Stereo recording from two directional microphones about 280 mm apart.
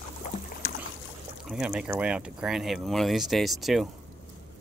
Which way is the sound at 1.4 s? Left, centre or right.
Centre.